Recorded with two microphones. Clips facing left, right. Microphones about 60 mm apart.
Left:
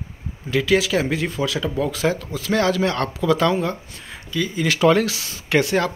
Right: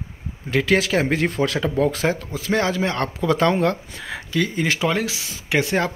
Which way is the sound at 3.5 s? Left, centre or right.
Right.